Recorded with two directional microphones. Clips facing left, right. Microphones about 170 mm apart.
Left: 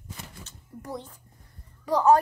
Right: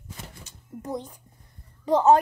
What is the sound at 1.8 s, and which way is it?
Speech, 25° right (ahead or behind).